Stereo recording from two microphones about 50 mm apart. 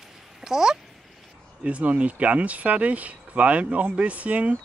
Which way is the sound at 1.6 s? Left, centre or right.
Right.